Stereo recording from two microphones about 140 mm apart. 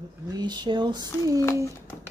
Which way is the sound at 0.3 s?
30° right (ahead or behind).